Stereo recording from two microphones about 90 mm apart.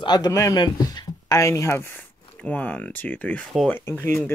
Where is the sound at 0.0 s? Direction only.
50° left (ahead or behind); by 2.0 s 25° left (ahead or behind).